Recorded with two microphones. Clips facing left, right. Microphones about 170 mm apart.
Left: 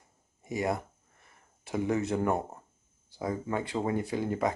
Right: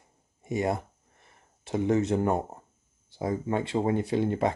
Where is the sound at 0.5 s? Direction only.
25° right (ahead or behind).